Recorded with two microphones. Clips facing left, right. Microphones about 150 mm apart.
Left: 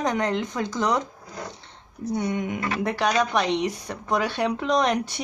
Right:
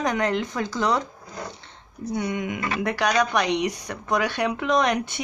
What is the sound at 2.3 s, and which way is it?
Speech, 90° right.